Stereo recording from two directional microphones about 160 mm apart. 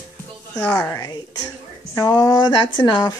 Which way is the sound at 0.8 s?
20° left (ahead or behind).